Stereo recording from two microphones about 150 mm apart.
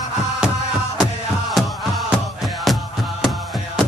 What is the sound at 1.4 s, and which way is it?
Music, centre (ahead or behind).